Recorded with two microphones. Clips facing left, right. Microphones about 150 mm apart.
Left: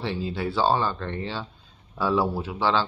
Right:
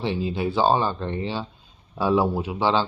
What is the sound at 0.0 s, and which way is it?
Speech, 15° right (ahead or behind).